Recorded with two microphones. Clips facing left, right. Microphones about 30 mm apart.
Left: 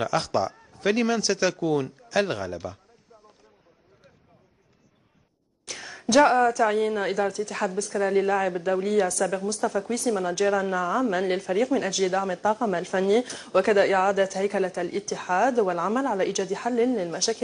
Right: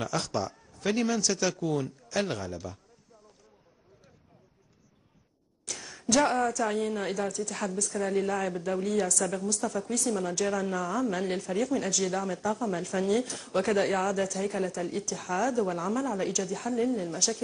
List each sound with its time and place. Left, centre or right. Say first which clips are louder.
0.0 s a woman's voice: left 6 dB; left
5.7 s a sound: left 4 dB; left
6.5 s a woman's voice: left 6 dB; left